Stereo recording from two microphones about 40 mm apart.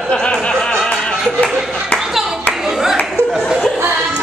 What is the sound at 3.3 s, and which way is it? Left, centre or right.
Chuckle, centre.